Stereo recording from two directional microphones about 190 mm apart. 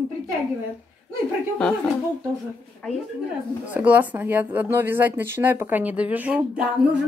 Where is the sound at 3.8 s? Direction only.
10° right (ahead or behind).